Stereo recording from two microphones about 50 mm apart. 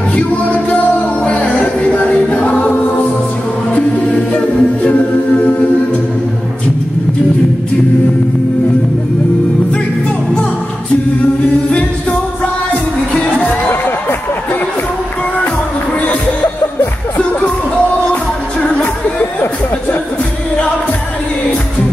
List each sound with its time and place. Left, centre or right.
0.1 s music: left
2.0 s a capella: left
4.3 s a capella: left
5.4 s music: left